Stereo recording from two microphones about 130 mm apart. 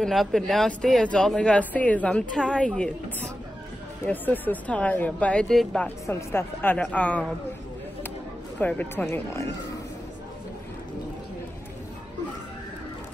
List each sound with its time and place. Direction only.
0.0 s speech: centre (ahead or behind)
5.9 s speech: 15° left (ahead or behind)
8.5 s speech: 15° left (ahead or behind)